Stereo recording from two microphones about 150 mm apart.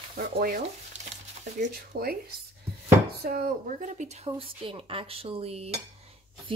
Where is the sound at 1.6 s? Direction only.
70° right (ahead or behind).